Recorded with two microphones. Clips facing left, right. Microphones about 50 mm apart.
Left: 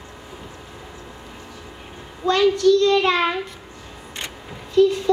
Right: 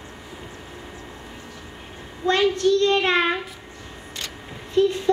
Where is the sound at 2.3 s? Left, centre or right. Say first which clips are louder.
Left 1 dB; right.